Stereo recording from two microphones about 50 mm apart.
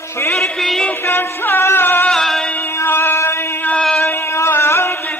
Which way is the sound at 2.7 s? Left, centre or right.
Left.